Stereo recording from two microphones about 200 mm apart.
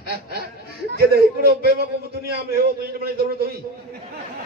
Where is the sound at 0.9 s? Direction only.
50° right (ahead or behind).